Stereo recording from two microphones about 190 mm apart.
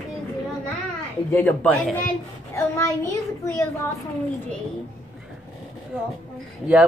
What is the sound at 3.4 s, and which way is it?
Speech, 15° left (ahead or behind).